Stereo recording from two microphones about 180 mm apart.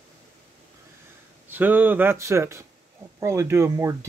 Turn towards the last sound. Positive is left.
turn(degrees=-15)  # may be behind; listen again after turning